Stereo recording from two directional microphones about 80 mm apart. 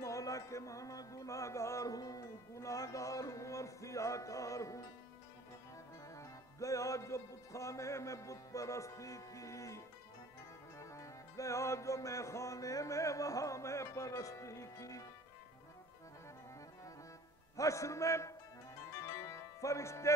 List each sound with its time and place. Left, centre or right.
0.0 s music: left
6.1 s music: left
17.6 s music: left